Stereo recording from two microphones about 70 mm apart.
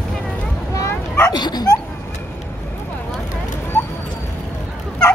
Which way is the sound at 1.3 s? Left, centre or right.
Left.